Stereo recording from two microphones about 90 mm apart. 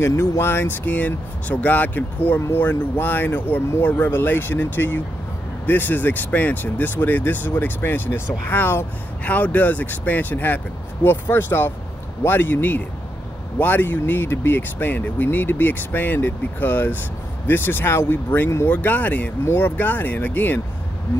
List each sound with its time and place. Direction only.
0.0 s speech: 30° left (ahead or behind)